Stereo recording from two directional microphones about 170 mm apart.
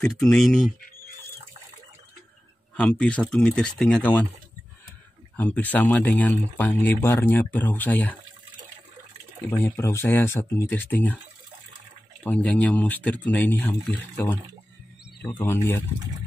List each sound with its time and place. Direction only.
0.0 s speech: 5° left (ahead or behind)
2.7 s speech: 5° left (ahead or behind)
5.4 s speech: 10° left (ahead or behind)
9.6 s speech: 15° left (ahead or behind)
12.2 s speech: 10° left (ahead or behind)